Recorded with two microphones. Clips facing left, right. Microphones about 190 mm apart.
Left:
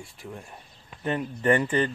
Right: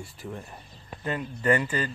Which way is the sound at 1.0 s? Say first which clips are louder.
Left 3 dB; 25° left (ahead or behind).